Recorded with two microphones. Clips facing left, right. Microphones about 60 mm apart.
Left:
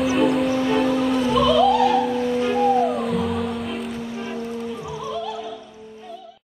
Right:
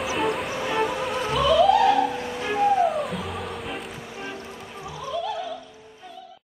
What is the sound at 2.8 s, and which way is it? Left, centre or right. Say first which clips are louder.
Music: left 4 dB; centre.